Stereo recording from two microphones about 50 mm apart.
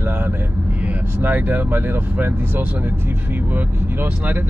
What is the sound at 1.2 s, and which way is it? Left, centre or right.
Speech, right.